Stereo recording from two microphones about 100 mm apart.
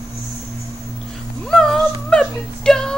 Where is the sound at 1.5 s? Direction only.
5° left (ahead or behind).